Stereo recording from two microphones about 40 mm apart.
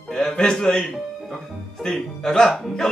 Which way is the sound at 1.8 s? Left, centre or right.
Centre.